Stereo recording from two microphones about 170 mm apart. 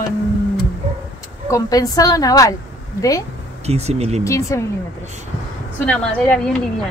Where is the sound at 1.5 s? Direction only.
20° left (ahead or behind).